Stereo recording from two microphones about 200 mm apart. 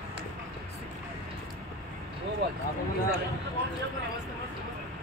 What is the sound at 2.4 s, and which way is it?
Speech, 55° right (ahead or behind).